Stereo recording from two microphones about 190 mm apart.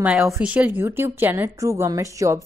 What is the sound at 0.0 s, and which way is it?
Speech, 5° right (ahead or behind).